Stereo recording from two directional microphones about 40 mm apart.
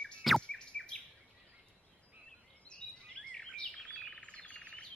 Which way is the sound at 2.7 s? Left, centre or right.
Left.